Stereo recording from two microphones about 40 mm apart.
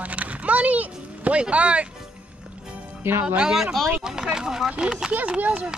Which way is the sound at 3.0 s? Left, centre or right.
Right.